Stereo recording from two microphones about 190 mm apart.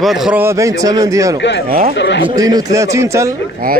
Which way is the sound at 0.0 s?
Centre (ahead or behind).